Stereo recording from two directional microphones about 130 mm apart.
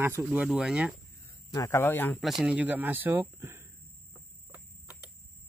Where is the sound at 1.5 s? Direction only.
25° left (ahead or behind).